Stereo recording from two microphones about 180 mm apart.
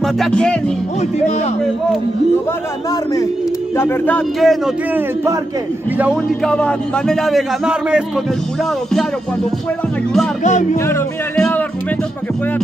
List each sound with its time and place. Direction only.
0.0 s speech: 5° left (ahead or behind)
3.7 s speech: 10° left (ahead or behind)
4.9 s a man's voice: 15° right (ahead or behind)
6.4 s speech: 5° left (ahead or behind)
10.4 s music: 40° left (ahead or behind)
11.3 s speech: 5° left (ahead or behind)